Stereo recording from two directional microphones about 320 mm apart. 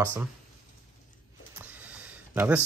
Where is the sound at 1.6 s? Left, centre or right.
Centre.